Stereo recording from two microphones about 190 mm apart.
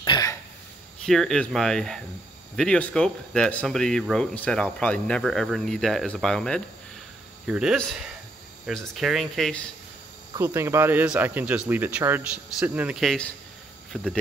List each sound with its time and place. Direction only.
0.0 s throat clearing: 20° left (ahead or behind)
1.0 s speech: centre (ahead or behind)
10.3 s speech: 15° right (ahead or behind)